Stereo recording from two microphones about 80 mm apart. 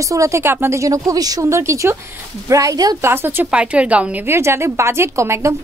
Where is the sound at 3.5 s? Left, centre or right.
Centre.